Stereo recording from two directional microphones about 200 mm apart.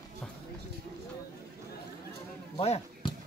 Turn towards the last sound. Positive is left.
turn(degrees=30)  # may be behind; listen again after turning